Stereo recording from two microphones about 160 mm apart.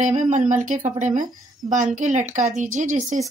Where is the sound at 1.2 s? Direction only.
25° right (ahead or behind).